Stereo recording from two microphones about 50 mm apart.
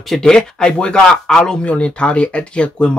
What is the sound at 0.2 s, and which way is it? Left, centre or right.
Speech, centre.